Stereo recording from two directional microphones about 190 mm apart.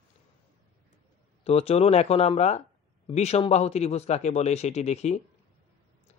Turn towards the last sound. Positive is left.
turn(degrees=35)  # may be behind; listen again after turning